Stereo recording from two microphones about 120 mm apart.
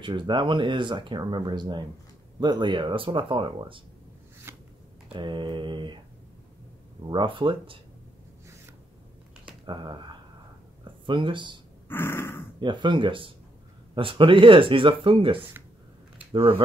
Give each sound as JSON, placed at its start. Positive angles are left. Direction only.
{"t": 0.0, "sound": "speech", "side_deg": -40}
{"t": 4.5, "sound": "shuffling cards", "side_deg": -20}
{"t": 5.1, "sound": "speech", "side_deg": -40}
{"t": 7.1, "sound": "speech", "side_deg": -40}
{"t": 9.5, "sound": "speech", "side_deg": -40}
{"t": 11.9, "sound": "a sound", "side_deg": 20}
{"t": 12.5, "sound": "speech", "side_deg": -40}